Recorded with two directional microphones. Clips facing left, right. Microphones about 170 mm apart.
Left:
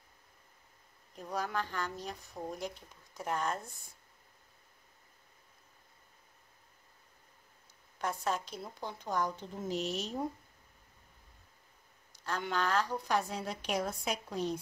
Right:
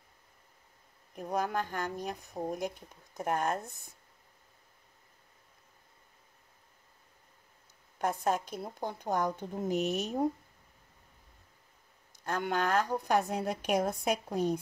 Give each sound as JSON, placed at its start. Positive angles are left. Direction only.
{"t": 1.1, "sound": "a woman's voice", "side_deg": -50}
{"t": 2.1, "sound": "speech", "side_deg": -15}
{"t": 3.2, "sound": "a woman's voice", "side_deg": -50}
{"t": 8.0, "sound": "a woman's voice", "side_deg": -50}
{"t": 12.2, "sound": "a woman's voice", "side_deg": -50}